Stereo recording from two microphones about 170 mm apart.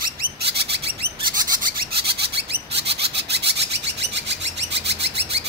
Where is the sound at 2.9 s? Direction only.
80° right.